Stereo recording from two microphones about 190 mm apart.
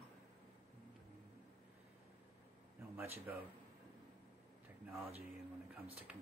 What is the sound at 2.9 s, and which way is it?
Speech, 10° right (ahead or behind).